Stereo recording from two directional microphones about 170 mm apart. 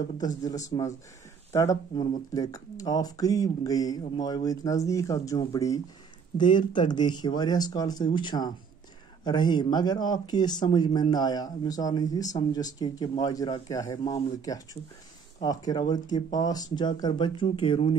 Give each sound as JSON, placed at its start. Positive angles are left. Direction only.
{"t": 0.4, "sound": "speech", "side_deg": 20}